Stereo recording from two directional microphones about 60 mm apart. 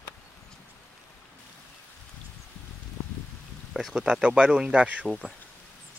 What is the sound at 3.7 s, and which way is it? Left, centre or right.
Speech, centre.